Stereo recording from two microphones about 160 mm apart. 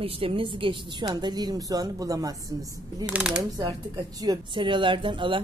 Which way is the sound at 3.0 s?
5° right (ahead or behind).